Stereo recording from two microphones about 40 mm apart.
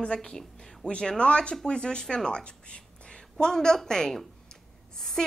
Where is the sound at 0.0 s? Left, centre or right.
Left.